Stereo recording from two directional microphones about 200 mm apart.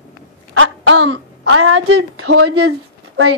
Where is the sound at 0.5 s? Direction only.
80° right.